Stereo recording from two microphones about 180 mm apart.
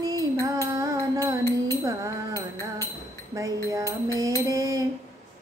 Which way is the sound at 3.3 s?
15° right (ahead or behind).